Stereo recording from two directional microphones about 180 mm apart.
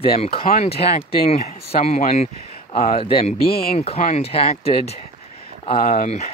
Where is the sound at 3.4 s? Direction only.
60° left (ahead or behind).